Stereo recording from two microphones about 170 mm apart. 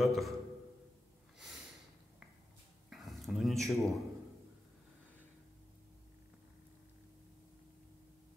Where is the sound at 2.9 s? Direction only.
Centre (ahead or behind).